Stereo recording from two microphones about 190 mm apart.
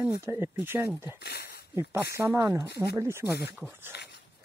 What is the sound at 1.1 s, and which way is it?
Speech, 55° left (ahead or behind).